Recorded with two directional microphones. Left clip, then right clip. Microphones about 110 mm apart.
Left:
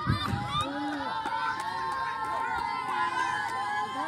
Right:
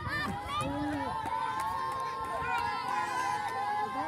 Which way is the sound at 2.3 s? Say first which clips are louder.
Left 2 dB; 35° right (ahead or behind).